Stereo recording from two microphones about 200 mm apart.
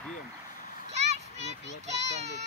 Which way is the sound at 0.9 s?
35° right (ahead or behind).